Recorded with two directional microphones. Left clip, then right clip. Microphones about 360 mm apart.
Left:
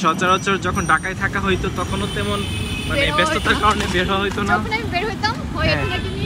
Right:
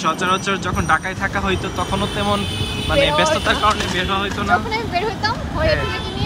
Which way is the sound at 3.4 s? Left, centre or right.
Centre.